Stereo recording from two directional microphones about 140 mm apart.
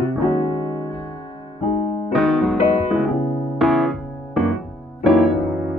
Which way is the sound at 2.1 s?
Centre (ahead or behind).